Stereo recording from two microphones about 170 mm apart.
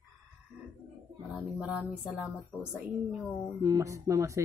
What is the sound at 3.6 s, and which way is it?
Speech, 20° right (ahead or behind).